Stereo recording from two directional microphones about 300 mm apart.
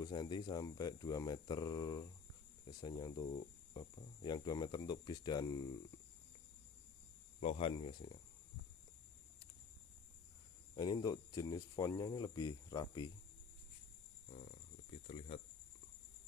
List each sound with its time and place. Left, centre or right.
0.0 s speech: centre
7.3 s speech: left
10.8 s speech: centre
14.3 s cricket: left
15.0 s speech: centre